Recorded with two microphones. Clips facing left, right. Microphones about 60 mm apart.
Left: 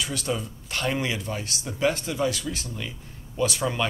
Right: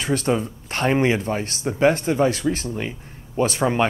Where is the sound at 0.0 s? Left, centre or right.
Right.